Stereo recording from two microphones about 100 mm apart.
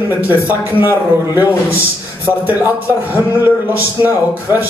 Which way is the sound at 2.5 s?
20° right (ahead or behind).